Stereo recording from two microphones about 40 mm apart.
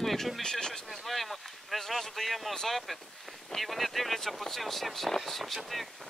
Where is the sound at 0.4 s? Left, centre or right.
Centre.